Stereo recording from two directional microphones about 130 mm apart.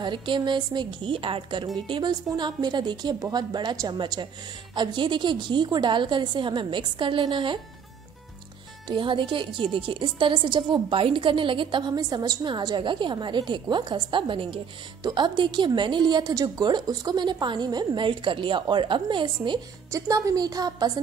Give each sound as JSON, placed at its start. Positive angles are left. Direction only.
{"t": 0.0, "sound": "a woman's voice", "side_deg": -40}
{"t": 8.8, "sound": "a woman's voice", "side_deg": -40}
{"t": 19.9, "sound": "a woman's voice", "side_deg": -25}